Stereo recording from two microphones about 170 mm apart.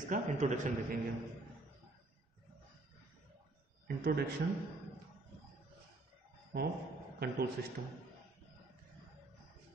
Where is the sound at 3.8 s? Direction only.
60° right (ahead or behind).